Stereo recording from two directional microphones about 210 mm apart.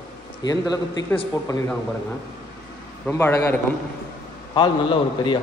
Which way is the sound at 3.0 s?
10° left (ahead or behind).